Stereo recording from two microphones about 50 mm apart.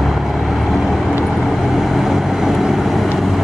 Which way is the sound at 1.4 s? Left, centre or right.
Centre.